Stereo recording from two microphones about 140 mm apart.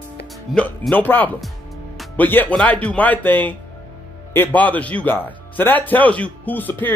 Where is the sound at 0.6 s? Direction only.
10° left (ahead or behind).